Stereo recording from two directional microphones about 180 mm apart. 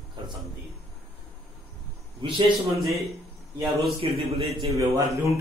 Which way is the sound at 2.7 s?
Centre (ahead or behind).